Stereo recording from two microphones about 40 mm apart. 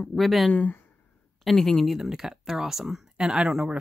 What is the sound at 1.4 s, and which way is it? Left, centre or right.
Speech, centre.